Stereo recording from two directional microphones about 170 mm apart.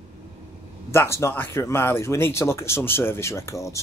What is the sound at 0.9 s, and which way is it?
A man's voice, 15° left (ahead or behind).